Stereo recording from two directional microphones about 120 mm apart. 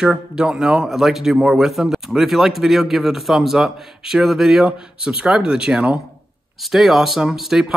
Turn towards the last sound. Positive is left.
turn(degrees=-5)  # may be behind; listen again after turning